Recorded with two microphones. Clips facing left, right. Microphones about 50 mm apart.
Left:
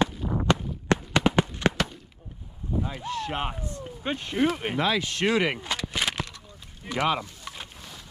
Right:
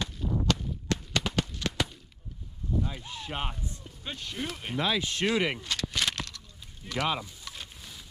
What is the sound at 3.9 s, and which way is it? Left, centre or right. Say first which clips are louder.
Speech: left 10 dB; left.